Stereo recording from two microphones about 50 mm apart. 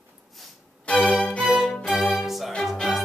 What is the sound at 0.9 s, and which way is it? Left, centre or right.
Music, left.